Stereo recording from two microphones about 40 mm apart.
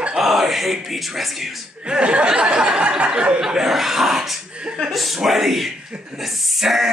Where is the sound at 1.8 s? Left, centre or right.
Right.